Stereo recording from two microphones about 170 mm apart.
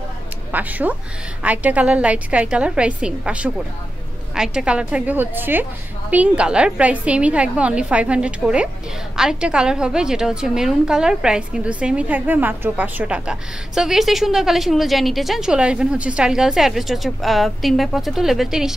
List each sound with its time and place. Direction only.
0.5 s a woman's voice: 10° right (ahead or behind)